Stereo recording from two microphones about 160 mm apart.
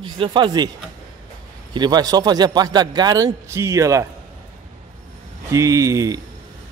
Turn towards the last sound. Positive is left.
turn(degrees=-20)  # may be behind; listen again after turning